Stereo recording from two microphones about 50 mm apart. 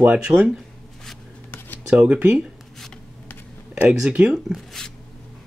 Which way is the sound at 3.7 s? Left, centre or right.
Right.